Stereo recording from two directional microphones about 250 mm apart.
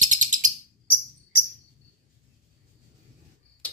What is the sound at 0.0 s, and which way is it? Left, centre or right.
Bird, right.